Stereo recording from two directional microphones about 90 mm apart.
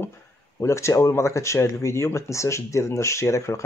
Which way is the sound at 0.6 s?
30° left (ahead or behind).